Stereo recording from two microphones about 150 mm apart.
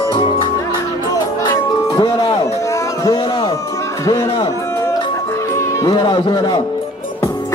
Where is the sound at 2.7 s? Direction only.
25° left (ahead or behind).